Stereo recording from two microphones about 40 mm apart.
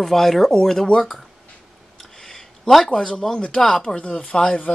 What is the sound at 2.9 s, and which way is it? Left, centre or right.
Speech, centre.